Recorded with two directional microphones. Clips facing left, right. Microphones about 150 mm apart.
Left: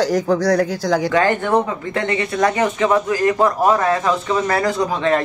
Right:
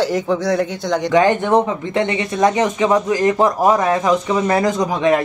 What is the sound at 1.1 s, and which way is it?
Speech, 20° right (ahead or behind).